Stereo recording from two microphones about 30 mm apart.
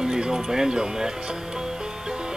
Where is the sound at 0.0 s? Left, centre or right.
Right.